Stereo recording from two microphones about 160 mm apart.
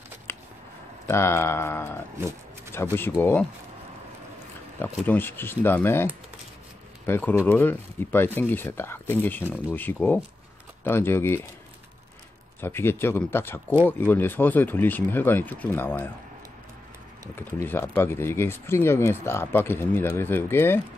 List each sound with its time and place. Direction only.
0.3 s a sound: 15° left (ahead or behind)
1.0 s speech: 15° left (ahead or behind)
4.7 s speech: 10° left (ahead or behind)
7.1 s speech: 10° left (ahead or behind)
12.5 s speech: 15° left (ahead or behind)
17.4 s speech: 15° left (ahead or behind)